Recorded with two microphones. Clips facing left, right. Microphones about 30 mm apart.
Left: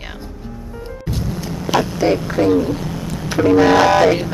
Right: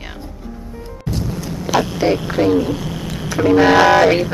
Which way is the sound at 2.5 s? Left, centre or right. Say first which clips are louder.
Even; right.